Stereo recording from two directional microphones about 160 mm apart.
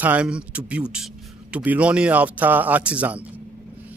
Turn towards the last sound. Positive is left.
turn(degrees=-10)  # may be behind; listen again after turning